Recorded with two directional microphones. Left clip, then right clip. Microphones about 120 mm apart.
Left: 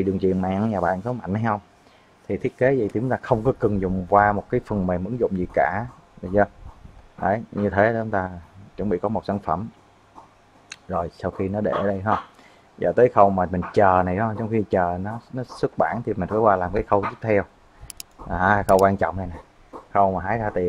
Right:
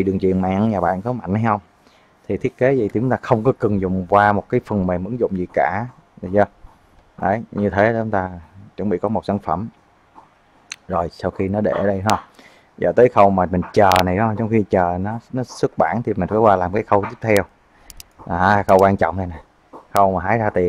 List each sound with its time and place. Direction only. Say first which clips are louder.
0.0 s speech: right 4 dB; 20° right (ahead or behind)
10.7 s speech: right 5 dB; 25° right (ahead or behind)